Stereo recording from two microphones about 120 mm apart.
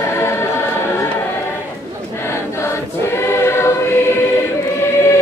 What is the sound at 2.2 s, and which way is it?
Choir, 20° left (ahead or behind).